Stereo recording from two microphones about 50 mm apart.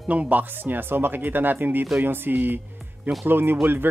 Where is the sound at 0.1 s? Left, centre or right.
Right.